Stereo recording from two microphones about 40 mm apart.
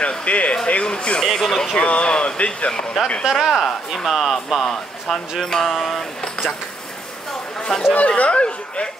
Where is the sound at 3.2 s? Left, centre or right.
Centre.